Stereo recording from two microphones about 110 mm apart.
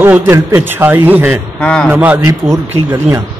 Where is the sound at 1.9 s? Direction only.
15° right (ahead or behind).